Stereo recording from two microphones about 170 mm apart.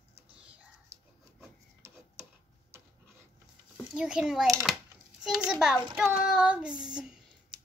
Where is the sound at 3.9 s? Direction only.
5° right (ahead or behind).